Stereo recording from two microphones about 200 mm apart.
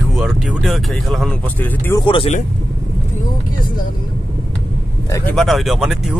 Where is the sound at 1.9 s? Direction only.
25° left (ahead or behind).